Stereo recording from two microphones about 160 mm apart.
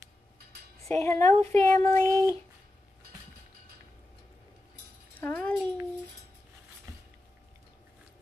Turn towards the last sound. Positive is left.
turn(degrees=-25)  # may be behind; listen again after turning